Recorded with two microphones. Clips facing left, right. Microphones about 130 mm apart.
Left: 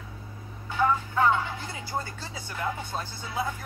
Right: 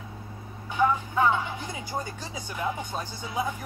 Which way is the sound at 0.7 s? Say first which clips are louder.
Right 1 dB; 20° right (ahead or behind).